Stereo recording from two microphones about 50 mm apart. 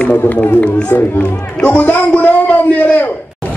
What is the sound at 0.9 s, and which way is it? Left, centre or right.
Speech, left.